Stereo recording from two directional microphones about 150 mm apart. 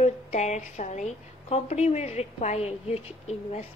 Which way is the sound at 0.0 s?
50° left (ahead or behind).